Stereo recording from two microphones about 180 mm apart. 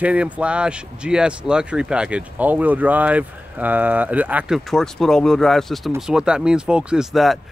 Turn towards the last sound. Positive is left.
turn(degrees=0)  # may be behind; listen again after turning